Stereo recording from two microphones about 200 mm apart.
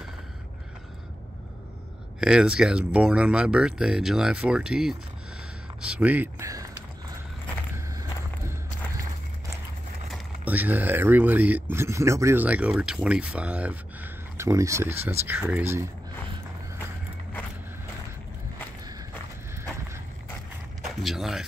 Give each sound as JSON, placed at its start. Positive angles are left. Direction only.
{"t": 2.1, "sound": "speech", "side_deg": -5}
{"t": 7.7, "sound": "walk", "side_deg": -15}
{"t": 10.1, "sound": "speech", "side_deg": -10}
{"t": 21.0, "sound": "speech", "side_deg": 0}